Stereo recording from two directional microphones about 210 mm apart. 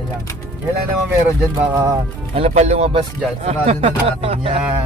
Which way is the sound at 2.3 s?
30° right (ahead or behind).